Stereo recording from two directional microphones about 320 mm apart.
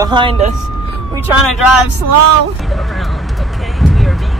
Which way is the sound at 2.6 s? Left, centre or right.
Centre.